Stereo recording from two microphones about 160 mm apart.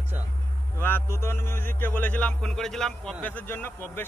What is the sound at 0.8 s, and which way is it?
A man's voice, 15° left (ahead or behind).